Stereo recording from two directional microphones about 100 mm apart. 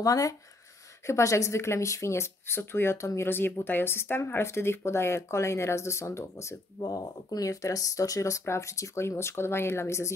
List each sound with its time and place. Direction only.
0.0 s speech: 35° left (ahead or behind)
6.8 s speech: 40° left (ahead or behind)